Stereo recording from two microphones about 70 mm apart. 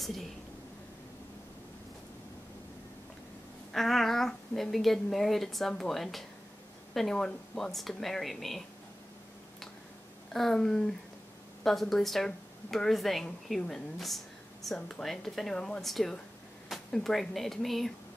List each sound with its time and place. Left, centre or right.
0.0 s speech: centre
3.7 s a woman's voice: centre
10.3 s a sound: centre
11.6 s a woman's voice: centre